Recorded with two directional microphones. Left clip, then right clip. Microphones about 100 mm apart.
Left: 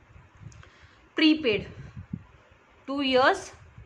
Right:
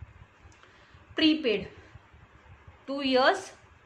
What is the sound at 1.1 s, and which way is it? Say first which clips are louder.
Speech: left 2 dB; 35° left (ahead or behind).